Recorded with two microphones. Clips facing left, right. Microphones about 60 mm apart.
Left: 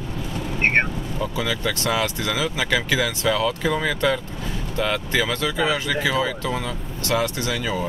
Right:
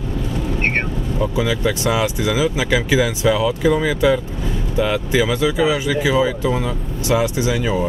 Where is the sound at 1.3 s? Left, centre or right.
Centre.